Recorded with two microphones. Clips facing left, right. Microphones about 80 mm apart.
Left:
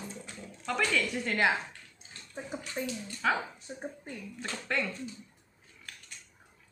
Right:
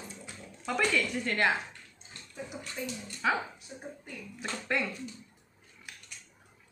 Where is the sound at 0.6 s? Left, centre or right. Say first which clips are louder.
Right 1 dB; centre.